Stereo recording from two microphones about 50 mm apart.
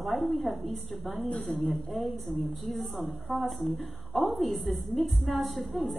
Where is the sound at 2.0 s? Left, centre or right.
Centre.